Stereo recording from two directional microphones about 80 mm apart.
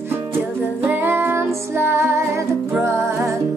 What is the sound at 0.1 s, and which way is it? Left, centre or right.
Music, right.